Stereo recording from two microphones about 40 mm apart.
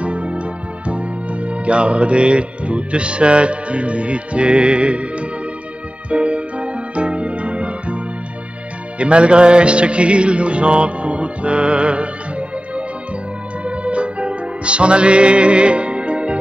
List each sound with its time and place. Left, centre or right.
0.0 s speech: right
6.0 s keyboard: right
8.9 s music: right